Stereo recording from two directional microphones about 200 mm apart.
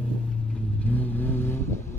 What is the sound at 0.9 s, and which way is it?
Vehicle, 10° left (ahead or behind).